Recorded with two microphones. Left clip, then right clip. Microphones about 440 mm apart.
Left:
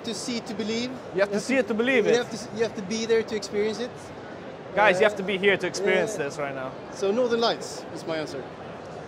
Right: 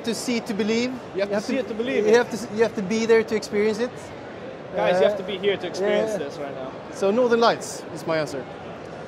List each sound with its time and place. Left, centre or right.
0.0 s speech: right
1.2 s speech: left
2.0 s speech: right
4.7 s speech: left
7.0 s speech: right